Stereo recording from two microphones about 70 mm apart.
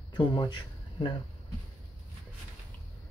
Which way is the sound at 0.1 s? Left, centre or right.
Left.